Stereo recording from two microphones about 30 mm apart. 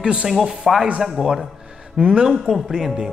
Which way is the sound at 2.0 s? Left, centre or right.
Right.